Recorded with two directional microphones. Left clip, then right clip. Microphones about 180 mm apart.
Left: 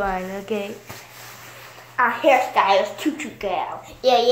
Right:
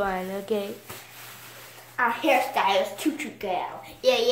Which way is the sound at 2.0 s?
40° right (ahead or behind).